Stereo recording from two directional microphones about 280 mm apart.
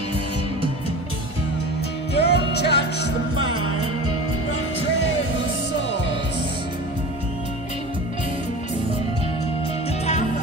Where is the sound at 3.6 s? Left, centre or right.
Left.